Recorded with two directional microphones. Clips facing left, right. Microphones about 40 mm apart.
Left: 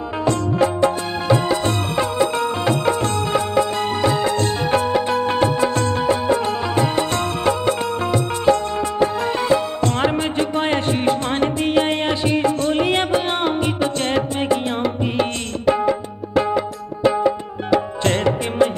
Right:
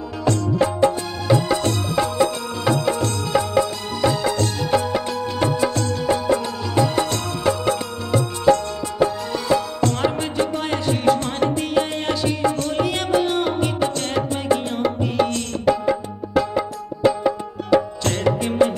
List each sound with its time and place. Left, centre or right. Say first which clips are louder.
2.3 s music: left 2 dB; left
4.6 s music: left 3 dB; left
9.8 s music: left 3 dB; left
13.6 s music: left 1 dB; left
18.0 s music: left 2 dB; left